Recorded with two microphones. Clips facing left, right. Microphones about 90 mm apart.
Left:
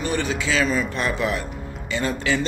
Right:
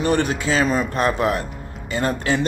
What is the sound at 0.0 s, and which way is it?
Speech, 50° right (ahead or behind).